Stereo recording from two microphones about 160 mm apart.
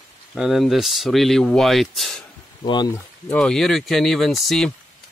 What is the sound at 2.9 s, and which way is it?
Speech, 15° left (ahead or behind).